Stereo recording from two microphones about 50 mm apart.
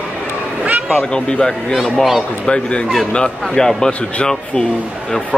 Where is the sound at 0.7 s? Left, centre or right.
Right.